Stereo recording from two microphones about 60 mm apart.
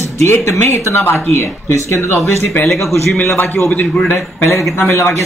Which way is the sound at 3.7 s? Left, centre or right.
Left.